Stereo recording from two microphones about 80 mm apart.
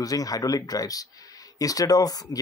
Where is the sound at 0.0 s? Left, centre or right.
Left.